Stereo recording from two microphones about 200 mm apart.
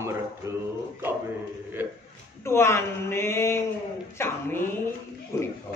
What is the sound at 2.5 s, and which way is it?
Speech, 15° left (ahead or behind).